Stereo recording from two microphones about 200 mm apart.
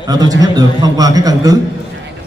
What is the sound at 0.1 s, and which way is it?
A man's voice, 20° right (ahead or behind).